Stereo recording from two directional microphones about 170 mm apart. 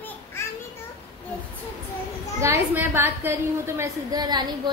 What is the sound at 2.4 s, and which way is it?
A woman's voice, 10° right (ahead or behind).